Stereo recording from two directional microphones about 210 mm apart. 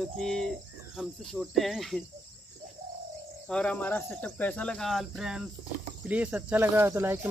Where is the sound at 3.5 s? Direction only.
5° left (ahead or behind); by 7.3 s 10° right (ahead or behind).